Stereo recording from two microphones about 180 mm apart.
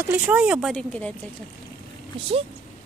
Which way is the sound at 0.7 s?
5° left (ahead or behind).